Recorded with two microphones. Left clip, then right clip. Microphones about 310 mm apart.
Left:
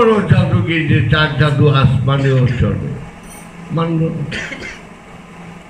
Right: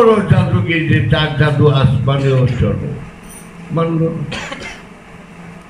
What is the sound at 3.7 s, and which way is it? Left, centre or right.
Speech, centre.